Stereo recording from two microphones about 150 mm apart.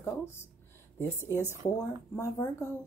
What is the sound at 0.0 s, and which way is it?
A woman's voice, 15° left (ahead or behind).